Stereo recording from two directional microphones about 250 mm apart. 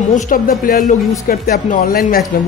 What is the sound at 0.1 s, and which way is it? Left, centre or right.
A man's voice, left.